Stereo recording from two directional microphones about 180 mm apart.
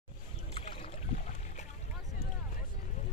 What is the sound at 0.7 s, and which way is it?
Boat, 40° left (ahead or behind).